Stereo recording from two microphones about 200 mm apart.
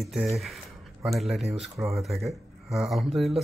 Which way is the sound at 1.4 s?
30° right (ahead or behind).